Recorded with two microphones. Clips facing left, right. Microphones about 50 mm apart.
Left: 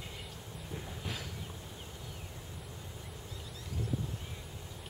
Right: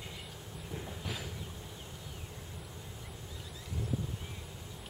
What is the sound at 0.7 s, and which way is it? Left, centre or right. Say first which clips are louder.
Train: right 1 dB; centre.